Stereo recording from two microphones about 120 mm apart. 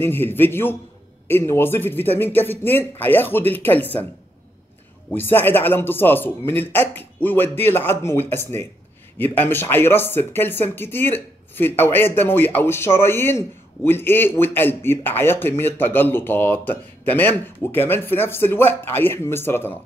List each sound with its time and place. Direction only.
0.0 s speech: 20° left (ahead or behind)
5.1 s speech: 15° left (ahead or behind)